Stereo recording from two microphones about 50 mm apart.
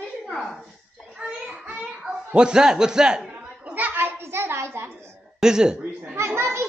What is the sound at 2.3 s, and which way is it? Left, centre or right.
A man's voice, centre.